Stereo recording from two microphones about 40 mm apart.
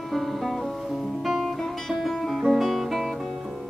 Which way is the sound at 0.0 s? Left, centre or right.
Centre.